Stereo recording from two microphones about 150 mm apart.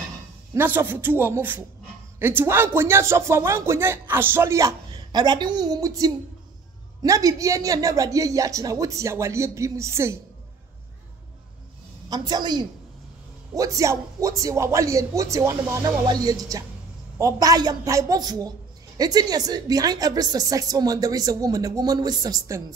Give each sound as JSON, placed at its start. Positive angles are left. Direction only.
{"t": 0.6, "sound": "a woman's voice", "side_deg": -15}
{"t": 12.1, "sound": "a woman's voice", "side_deg": -30}